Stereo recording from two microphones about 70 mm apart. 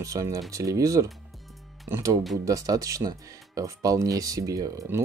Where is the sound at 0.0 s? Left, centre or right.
Right.